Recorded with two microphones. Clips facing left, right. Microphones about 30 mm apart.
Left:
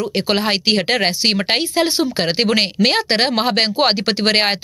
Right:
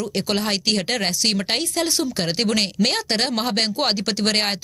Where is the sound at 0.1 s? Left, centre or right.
Left.